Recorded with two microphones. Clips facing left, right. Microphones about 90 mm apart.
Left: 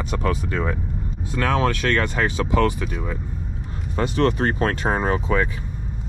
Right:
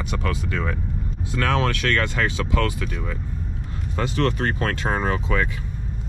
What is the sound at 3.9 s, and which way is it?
Speech, 35° left (ahead or behind).